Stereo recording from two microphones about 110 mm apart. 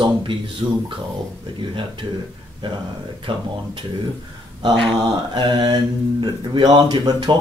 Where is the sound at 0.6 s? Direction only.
45° right (ahead or behind).